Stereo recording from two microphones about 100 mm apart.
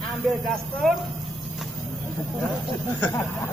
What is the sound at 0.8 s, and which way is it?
Speech, 5° left (ahead or behind).